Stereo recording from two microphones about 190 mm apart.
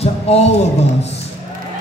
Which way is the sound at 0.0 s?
35° left (ahead or behind).